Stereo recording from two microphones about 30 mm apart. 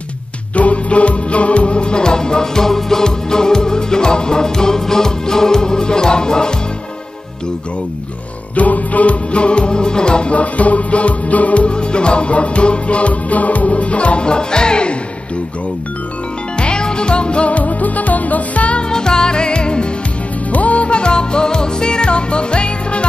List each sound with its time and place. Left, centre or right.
0.6 s music: left
8.5 s music: left
10.3 s music: left
11.6 s music: left
14.2 s music: left
16.5 s music: left
17.5 s music: left
18.8 s music: left
20.5 s music: left